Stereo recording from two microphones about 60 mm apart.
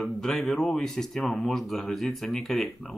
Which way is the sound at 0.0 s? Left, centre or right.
Centre.